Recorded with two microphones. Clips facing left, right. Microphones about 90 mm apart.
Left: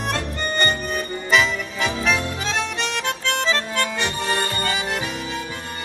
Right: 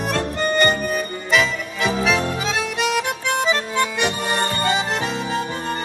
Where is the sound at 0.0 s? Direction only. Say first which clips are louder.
Right 4 dB; 5° right (ahead or behind).